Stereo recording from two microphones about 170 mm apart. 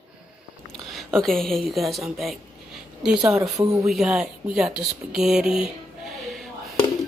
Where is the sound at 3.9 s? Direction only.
Centre (ahead or behind).